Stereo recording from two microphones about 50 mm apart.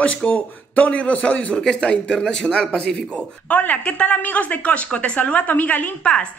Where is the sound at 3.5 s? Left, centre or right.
Left.